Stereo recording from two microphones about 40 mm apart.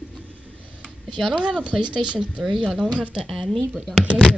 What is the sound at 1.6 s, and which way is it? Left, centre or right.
Speech, right.